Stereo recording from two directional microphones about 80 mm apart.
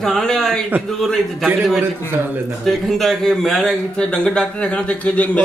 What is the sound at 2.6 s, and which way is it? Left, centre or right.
A man's voice, centre.